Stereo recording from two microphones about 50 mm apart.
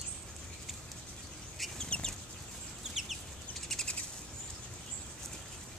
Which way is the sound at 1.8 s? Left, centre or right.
Centre.